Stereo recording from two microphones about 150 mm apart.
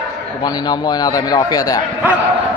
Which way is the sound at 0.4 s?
25° left (ahead or behind).